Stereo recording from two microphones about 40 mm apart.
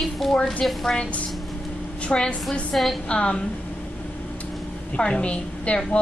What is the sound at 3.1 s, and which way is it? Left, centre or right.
Speech, left.